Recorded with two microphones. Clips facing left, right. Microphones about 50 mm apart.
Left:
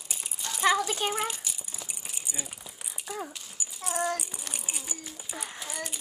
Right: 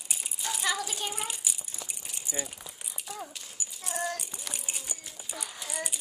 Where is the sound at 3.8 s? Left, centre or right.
Centre.